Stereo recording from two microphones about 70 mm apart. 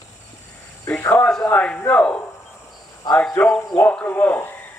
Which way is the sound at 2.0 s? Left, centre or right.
Centre.